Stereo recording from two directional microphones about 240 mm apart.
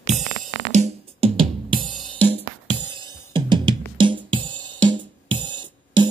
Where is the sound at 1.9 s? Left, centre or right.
Centre.